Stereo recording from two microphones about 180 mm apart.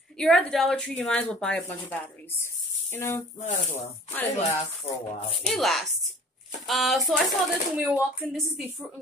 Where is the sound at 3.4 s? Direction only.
40° left (ahead or behind).